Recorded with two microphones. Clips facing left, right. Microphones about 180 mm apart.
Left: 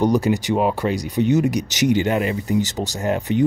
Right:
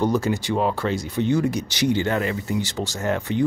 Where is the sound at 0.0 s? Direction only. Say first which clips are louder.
Left 4 dB; 15° left (ahead or behind).